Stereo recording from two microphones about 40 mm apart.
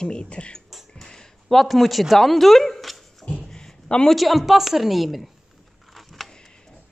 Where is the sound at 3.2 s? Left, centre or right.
Left.